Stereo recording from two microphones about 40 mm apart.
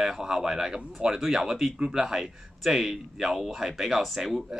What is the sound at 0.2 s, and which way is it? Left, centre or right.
Speech, centre.